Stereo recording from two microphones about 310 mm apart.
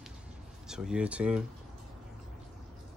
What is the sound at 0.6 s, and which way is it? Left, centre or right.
Speech, centre.